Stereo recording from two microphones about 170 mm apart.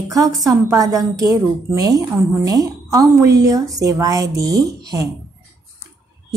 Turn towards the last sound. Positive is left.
turn(degrees=-20)  # may be behind; listen again after turning